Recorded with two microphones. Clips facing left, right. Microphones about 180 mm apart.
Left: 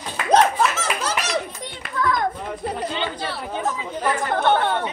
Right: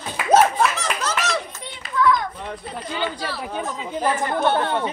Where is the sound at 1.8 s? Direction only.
60° left (ahead or behind).